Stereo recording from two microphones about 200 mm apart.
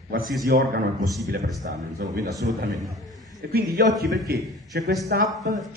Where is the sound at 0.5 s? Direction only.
50° right (ahead or behind).